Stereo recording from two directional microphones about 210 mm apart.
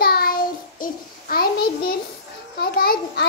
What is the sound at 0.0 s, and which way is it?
Child singing, 45° left (ahead or behind).